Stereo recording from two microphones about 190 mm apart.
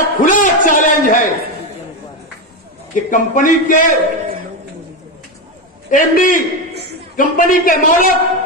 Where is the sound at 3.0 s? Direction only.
45° left (ahead or behind).